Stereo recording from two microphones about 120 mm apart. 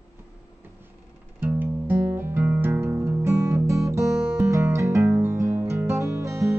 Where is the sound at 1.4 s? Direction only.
15° right (ahead or behind).